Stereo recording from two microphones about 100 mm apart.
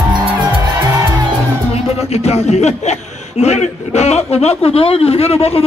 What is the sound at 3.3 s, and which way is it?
A man's voice, 90° left.